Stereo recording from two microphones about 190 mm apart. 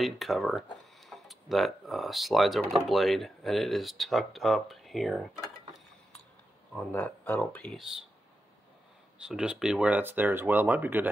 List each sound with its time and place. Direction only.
0.0 s speech: centre (ahead or behind)
6.7 s speech: 5° left (ahead or behind)
9.2 s speech: 5° right (ahead or behind)